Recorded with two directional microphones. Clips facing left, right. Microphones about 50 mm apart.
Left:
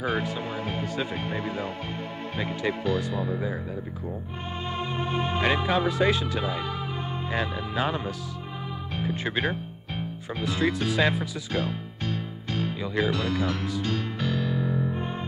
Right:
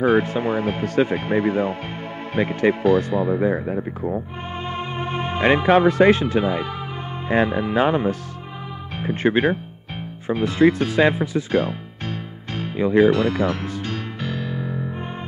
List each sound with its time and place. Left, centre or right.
0.0 s speech: right
9.0 s music: right
9.3 s speech: right
11.0 s speech: right
12.5 s music: right